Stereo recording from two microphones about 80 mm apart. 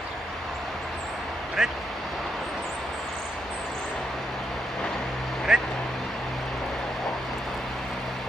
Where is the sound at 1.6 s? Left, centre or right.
Centre.